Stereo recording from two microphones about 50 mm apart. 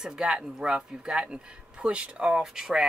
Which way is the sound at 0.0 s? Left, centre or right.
Centre.